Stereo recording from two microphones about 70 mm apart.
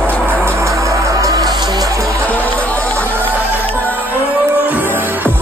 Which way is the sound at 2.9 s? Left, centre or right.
Right.